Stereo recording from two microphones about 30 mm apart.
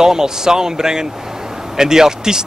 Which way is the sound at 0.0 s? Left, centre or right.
Centre.